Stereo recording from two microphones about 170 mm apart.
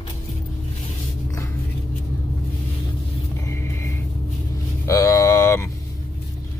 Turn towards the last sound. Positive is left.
turn(degrees=15)  # may be behind; listen again after turning